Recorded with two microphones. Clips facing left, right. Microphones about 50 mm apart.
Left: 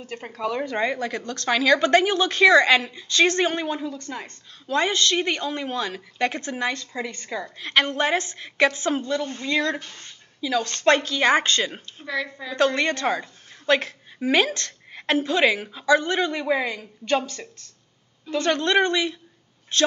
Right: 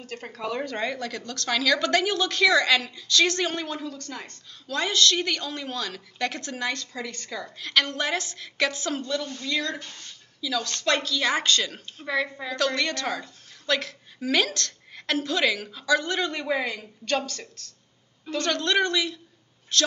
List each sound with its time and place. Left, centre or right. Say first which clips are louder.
0.0 s a woman's voice: left 4 dB; left
12.1 s a woman's voice: right 1 dB; centre
12.5 s a woman's voice: left 5 dB; left